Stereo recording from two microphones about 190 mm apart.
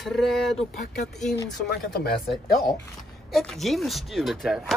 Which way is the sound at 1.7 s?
55° left (ahead or behind).